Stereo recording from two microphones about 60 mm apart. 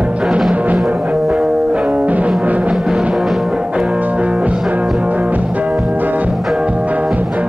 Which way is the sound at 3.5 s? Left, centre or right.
Centre.